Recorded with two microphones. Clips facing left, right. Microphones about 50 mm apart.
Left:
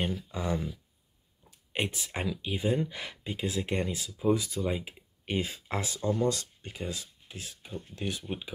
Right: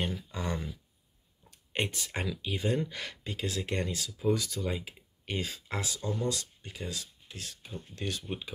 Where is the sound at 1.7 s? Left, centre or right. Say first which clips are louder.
Even; centre; by 6.7 s left.